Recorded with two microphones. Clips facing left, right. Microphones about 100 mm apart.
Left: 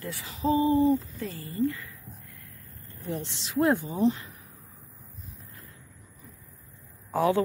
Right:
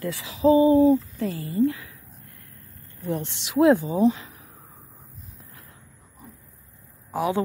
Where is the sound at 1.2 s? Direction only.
75° right (ahead or behind).